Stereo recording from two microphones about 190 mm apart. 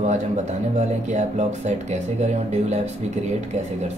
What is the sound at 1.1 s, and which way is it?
Speech, 40° right (ahead or behind).